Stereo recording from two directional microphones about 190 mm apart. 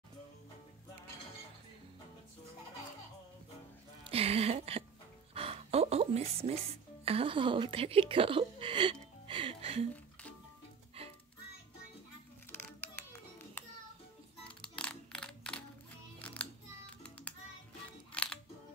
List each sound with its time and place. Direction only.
4.0 s a sound: 30° right (ahead or behind)
7.1 s a woman's voice: 30° right (ahead or behind)
9.3 s music: 30° right (ahead or behind)
11.0 s music: 30° right (ahead or behind)
14.6 s a sound: 5° left (ahead or behind)
16.2 s music: 5° left (ahead or behind)
18.1 s music: 5° left (ahead or behind)